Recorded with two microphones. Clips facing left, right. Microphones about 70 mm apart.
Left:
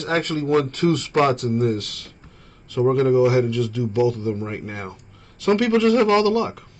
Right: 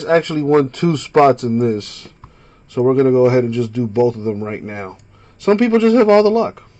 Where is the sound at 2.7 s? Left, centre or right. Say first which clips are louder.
Right 5 dB; right.